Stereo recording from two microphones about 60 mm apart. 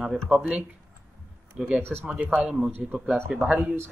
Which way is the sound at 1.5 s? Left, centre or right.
Centre.